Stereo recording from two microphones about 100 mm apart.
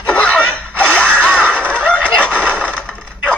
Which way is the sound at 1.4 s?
15° right (ahead or behind).